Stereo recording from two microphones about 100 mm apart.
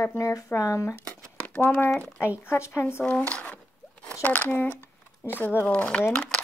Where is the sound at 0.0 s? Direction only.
30° left (ahead or behind).